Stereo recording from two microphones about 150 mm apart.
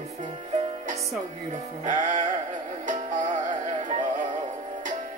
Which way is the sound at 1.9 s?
55° right (ahead or behind).